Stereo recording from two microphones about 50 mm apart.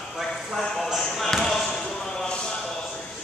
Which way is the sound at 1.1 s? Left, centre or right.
Centre.